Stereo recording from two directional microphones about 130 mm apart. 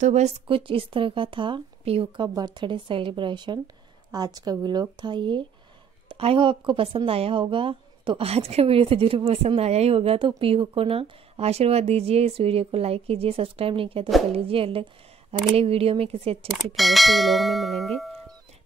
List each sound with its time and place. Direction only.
0.0 s a woman's voice: 60° right (ahead or behind)
0.5 s a woman's voice: 40° right (ahead or behind)
16.5 s speech: centre (ahead or behind)